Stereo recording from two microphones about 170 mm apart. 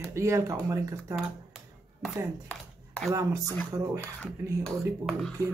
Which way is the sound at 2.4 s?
5° left (ahead or behind).